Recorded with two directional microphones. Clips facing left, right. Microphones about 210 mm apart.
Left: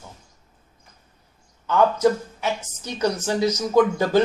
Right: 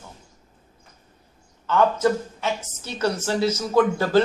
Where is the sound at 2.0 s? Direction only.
15° left (ahead or behind).